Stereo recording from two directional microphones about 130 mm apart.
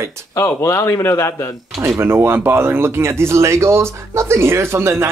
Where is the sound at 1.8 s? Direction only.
20° right (ahead or behind).